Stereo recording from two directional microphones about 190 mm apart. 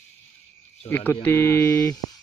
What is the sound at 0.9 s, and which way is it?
Speech, 10° left (ahead or behind).